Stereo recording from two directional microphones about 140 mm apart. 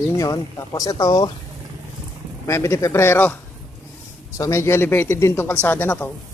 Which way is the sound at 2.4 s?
20° left (ahead or behind).